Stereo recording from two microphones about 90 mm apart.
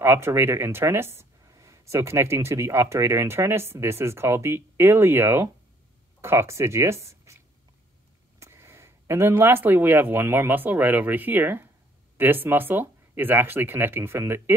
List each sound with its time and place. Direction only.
0.0 s speech: 25° right (ahead or behind)
8.4 s speech: 30° right (ahead or behind)